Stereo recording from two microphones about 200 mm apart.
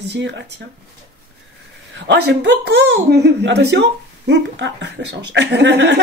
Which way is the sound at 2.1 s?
60° right (ahead or behind).